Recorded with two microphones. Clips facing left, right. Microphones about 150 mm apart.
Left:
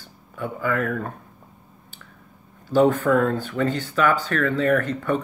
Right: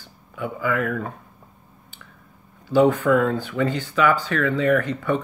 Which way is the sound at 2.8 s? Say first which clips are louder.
Right 1 dB; 45° left (ahead or behind).